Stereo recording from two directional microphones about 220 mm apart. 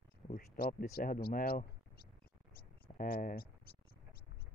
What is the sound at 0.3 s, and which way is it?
Speech, 40° left (ahead or behind).